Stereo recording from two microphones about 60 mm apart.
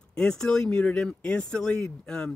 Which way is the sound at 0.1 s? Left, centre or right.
Centre.